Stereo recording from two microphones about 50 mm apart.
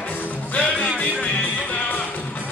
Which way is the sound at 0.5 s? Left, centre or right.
Left.